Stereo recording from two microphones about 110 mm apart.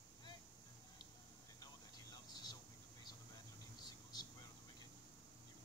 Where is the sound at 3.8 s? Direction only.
40° left (ahead or behind).